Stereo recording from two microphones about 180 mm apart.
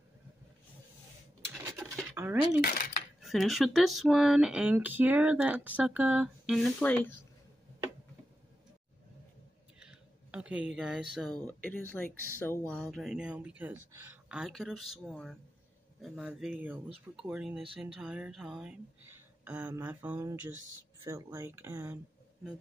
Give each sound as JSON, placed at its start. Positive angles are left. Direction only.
{"t": 2.1, "sound": "speech", "side_deg": -10}
{"t": 2.6, "sound": "cutlery", "side_deg": 50}
{"t": 3.2, "sound": "speech", "side_deg": 0}
{"t": 9.8, "sound": "a sound", "side_deg": -5}
{"t": 11.4, "sound": "speech", "side_deg": 10}